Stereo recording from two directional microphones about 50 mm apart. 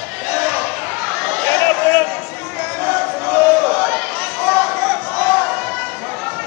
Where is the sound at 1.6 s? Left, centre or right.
Left.